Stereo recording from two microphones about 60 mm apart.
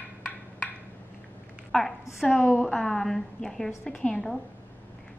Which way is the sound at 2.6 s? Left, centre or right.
Centre.